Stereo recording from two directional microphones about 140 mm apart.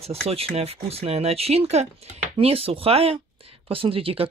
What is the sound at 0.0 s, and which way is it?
Speech, 45° right (ahead or behind).